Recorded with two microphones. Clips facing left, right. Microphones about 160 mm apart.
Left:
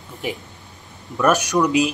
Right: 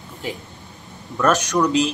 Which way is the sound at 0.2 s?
15° left (ahead or behind).